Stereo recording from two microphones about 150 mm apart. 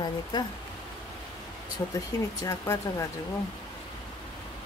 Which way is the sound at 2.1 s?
25° left (ahead or behind).